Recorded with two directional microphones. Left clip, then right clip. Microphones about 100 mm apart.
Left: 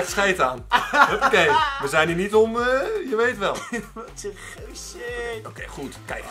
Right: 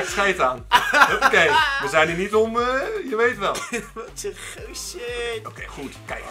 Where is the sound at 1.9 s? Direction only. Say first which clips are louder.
Right 1 dB; 15° left (ahead or behind).